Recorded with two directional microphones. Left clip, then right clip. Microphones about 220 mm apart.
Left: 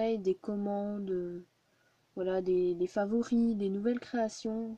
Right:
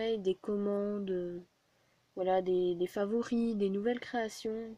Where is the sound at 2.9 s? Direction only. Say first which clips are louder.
Left 2 dB; 20° left (ahead or behind).